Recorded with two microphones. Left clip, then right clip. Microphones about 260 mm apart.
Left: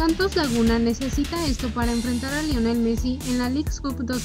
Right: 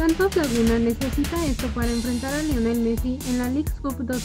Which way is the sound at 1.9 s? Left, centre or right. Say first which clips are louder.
Even; centre.